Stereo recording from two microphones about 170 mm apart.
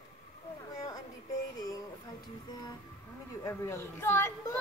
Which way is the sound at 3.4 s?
15° left (ahead or behind).